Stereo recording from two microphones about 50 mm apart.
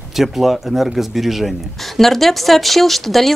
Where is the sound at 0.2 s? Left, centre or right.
Centre.